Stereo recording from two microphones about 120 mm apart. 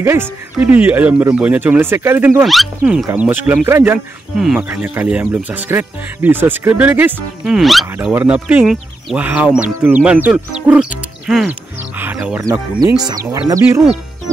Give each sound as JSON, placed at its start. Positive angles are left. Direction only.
{"t": 0.0, "sound": "speech", "side_deg": -20}
{"t": 2.4, "sound": "speech", "side_deg": 0}
{"t": 7.4, "sound": "speech", "side_deg": 0}
{"t": 7.8, "sound": "speech", "side_deg": -15}
{"t": 12.7, "sound": "speech", "side_deg": -35}